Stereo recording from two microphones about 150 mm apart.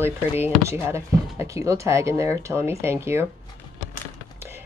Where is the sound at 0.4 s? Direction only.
20° right (ahead or behind).